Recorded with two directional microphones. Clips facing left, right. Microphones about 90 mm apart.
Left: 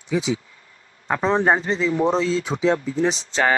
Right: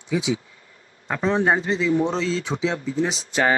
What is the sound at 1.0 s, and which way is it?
Speech, 30° left (ahead or behind).